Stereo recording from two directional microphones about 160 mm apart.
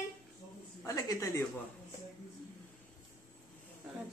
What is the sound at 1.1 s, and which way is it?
Speech, 20° left (ahead or behind).